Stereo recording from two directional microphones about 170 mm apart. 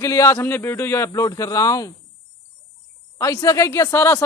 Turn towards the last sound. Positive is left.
turn(degrees=15)  # may be behind; listen again after turning